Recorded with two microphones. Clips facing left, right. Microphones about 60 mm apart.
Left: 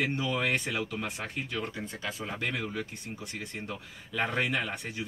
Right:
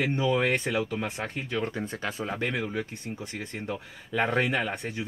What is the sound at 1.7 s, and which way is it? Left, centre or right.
Speech, right.